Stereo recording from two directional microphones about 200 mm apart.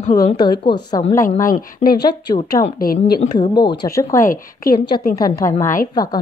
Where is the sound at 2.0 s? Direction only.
20° left (ahead or behind).